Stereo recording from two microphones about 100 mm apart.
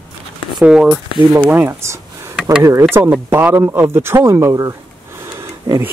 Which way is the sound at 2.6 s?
25° right (ahead or behind).